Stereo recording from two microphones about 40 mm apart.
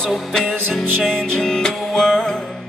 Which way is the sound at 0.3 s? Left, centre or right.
Centre.